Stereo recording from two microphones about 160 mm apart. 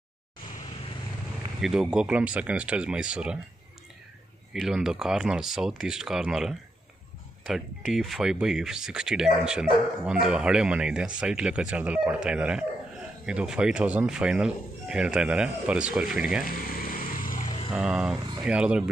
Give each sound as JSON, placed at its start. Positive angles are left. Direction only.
{"t": 1.6, "sound": "speech", "side_deg": -5}
{"t": 4.6, "sound": "speech", "side_deg": -5}
{"t": 16.4, "sound": "vehicle", "side_deg": 60}
{"t": 17.7, "sound": "speech", "side_deg": -5}